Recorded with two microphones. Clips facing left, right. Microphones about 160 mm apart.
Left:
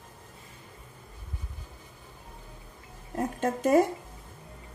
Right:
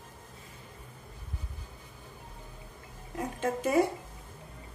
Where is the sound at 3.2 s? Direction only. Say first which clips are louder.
Left 3 dB; 45° left (ahead or behind).